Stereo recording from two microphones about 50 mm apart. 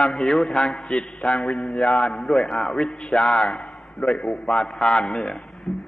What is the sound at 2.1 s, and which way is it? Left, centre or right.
Speech, centre.